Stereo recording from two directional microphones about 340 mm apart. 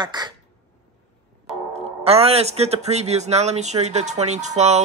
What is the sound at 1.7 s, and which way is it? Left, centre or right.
Speech, centre.